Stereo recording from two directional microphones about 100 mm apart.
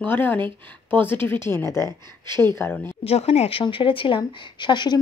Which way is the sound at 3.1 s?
90° left.